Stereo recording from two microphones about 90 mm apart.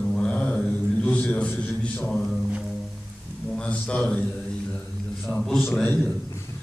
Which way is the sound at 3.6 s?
15° left (ahead or behind).